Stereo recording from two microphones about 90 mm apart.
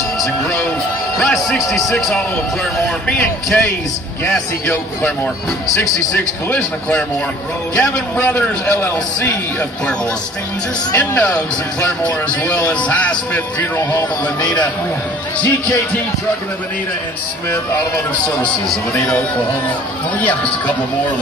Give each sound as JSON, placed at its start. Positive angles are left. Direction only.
{"t": 1.2, "sound": "a man's voice", "side_deg": 5}
{"t": 3.5, "sound": "a man's voice", "side_deg": 15}
{"t": 11.0, "sound": "speech", "side_deg": 15}
{"t": 13.6, "sound": "a man's voice", "side_deg": 25}
{"t": 14.4, "sound": "a man's voice", "side_deg": 55}
{"t": 18.7, "sound": "speech", "side_deg": 10}